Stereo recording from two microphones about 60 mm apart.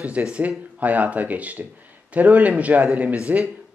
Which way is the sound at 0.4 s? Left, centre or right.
Right.